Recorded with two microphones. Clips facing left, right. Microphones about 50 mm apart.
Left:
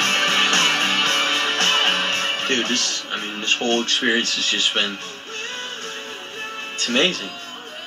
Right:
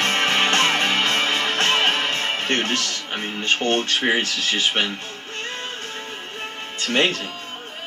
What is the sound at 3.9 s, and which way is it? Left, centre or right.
Speech, right.